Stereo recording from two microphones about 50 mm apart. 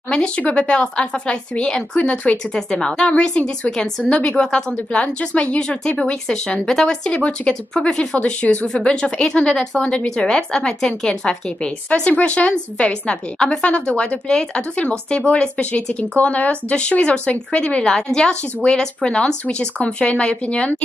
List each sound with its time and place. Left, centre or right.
0.4 s a woman's voice: left